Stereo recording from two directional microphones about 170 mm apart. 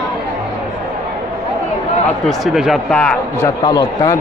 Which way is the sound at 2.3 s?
Centre (ahead or behind).